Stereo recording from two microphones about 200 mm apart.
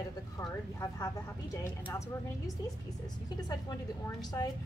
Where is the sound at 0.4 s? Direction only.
20° left (ahead or behind).